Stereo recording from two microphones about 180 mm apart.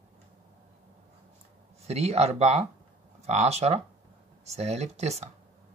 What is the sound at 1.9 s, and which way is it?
Speech, 35° right (ahead or behind).